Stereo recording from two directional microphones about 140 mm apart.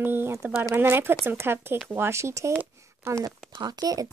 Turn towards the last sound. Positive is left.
turn(degrees=-25)  # may be behind; listen again after turning